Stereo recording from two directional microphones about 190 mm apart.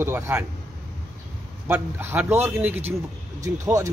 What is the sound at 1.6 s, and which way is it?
A man's voice, 10° right (ahead or behind).